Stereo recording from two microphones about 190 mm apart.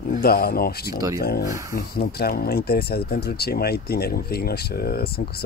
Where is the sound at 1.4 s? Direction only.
15° right (ahead or behind).